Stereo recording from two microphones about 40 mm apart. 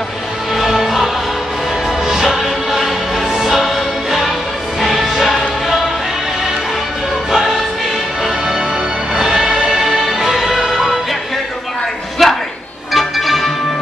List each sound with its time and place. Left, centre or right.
0.7 s music: centre
7.2 s music: centre
9.1 s music: centre
12.2 s a sound: centre
12.9 s music: centre